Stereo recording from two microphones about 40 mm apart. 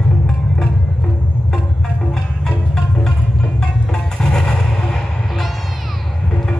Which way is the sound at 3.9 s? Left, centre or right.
Centre.